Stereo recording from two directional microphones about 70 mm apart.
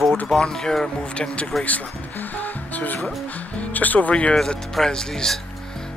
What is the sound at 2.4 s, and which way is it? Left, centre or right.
Music, left.